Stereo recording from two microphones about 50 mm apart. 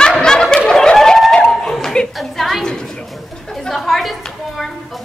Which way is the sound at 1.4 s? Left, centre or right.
Centre.